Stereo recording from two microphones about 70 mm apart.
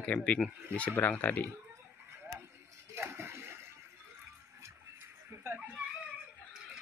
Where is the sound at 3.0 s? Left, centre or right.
Right.